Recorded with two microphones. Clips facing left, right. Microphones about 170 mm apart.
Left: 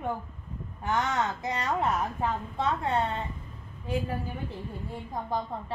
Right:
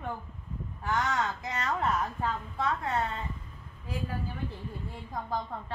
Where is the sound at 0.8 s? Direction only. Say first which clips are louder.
Left 2 dB; 20° left (ahead or behind).